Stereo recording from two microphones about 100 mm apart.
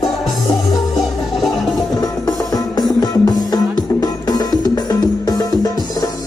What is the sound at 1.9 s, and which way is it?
Music, 40° left (ahead or behind).